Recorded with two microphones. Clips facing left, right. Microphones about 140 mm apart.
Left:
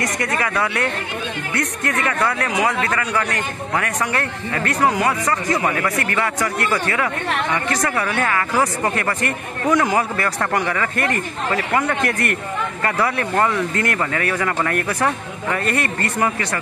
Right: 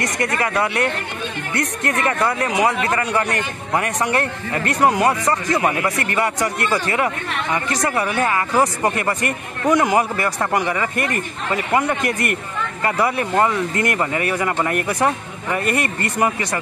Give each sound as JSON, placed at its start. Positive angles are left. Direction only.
{"t": 0.5, "sound": "a man's voice", "side_deg": -20}
{"t": 12.8, "sound": "speech", "side_deg": -15}